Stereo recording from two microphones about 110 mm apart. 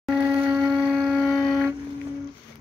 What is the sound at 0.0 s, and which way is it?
Shofar, 5° right (ahead or behind).